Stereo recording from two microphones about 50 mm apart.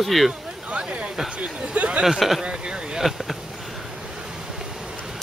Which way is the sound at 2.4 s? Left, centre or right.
Centre.